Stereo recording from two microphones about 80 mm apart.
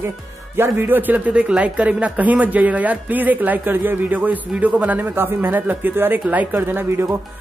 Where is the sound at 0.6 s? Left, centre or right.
Right.